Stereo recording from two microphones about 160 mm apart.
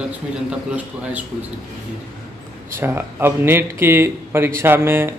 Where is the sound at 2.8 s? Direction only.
15° right (ahead or behind).